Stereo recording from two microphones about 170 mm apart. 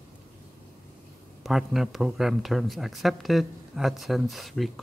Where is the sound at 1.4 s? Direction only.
Centre (ahead or behind).